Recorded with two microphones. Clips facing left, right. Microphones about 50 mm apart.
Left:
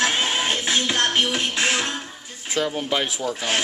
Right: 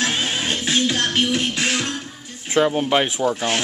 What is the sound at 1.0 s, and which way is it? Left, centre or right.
Music, centre.